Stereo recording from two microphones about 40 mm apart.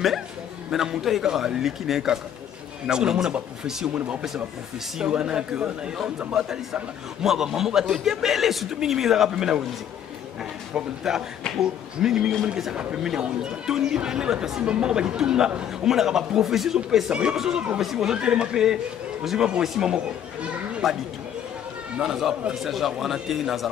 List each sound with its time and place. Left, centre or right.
0.7 s a man's voice: centre
5.0 s a man's voice: right
11.1 s a man's voice: centre
11.4 s speech: centre
12.0 s a man's voice: centre
14.7 s a man's voice: right
17.1 s a man's voice: right
22.0 s a man's voice: centre